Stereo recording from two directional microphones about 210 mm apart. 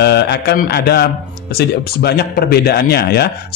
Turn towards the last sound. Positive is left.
turn(degrees=50)  # may be behind; listen again after turning